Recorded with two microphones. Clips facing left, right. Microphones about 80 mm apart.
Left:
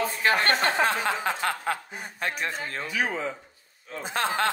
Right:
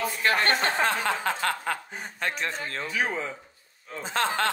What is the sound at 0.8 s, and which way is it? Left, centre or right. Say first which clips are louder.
Speech: even; centre.